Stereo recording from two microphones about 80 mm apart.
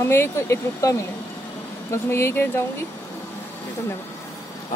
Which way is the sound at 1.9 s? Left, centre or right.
Left.